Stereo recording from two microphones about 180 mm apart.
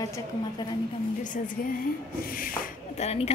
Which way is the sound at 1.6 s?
50° left (ahead or behind).